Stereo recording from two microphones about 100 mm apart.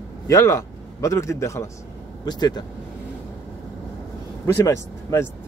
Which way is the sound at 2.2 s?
45° left (ahead or behind).